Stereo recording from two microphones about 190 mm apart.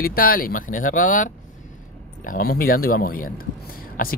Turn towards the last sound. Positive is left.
turn(degrees=45)  # may be behind; listen again after turning